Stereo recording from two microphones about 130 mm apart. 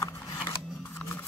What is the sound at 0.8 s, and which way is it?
Camera, 20° left (ahead or behind).